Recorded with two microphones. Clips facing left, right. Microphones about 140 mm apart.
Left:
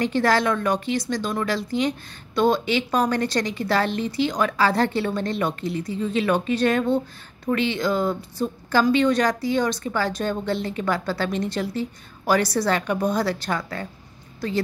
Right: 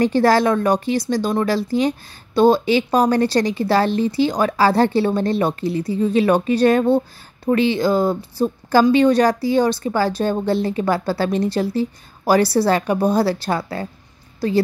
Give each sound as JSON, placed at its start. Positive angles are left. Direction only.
{"t": 0.0, "sound": "speech", "side_deg": -35}